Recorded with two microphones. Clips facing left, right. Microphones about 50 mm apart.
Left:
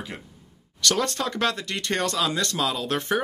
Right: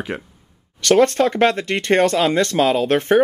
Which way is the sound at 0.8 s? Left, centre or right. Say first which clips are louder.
Right 11 dB; right.